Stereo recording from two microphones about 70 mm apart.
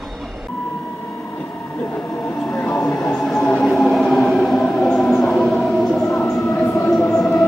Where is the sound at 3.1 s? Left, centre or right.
Centre.